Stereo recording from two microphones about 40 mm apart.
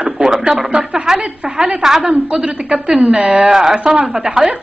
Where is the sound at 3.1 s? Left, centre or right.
Right.